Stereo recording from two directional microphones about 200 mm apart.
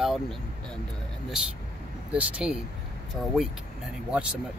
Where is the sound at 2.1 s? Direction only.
5° right (ahead or behind).